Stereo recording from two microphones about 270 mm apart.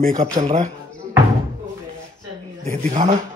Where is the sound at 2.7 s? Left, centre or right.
Right.